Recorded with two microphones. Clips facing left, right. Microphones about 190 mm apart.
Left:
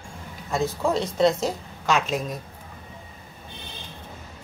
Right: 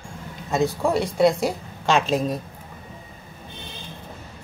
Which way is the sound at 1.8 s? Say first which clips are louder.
Right 3 dB; 30° right (ahead or behind).